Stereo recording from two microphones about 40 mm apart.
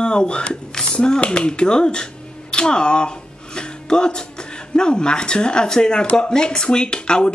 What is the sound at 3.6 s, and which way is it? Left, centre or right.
Music, left.